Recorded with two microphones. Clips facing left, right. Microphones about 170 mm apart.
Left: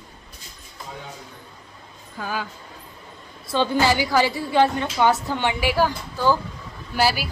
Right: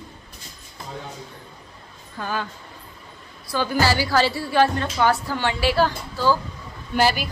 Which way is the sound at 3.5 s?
25° left (ahead or behind).